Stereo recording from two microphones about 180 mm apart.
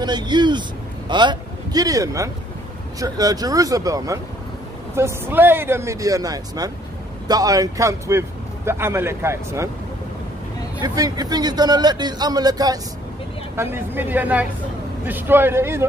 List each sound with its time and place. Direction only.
0.0 s a man's voice: 25° right (ahead or behind)
10.8 s a man's voice: 20° right (ahead or behind)